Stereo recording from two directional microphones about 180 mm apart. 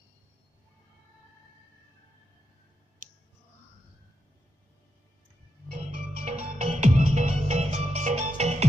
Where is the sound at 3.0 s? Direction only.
50° right (ahead or behind).